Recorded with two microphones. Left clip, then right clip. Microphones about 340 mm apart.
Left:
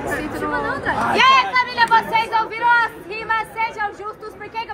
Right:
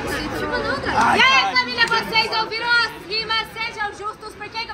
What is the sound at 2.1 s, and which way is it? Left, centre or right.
Speech, left.